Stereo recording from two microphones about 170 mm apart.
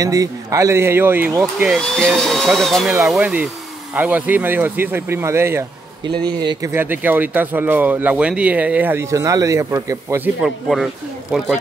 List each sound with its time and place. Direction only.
0.0 s speech: 20° right (ahead or behind)
1.8 s speech: 5° left (ahead or behind); by 5.7 s 15° right (ahead or behind)
6.0 s speech: 25° right (ahead or behind)
6.7 s speech: 10° right (ahead or behind)